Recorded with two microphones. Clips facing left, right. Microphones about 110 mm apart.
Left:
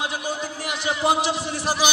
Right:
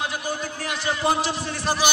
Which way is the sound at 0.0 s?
20° left (ahead or behind).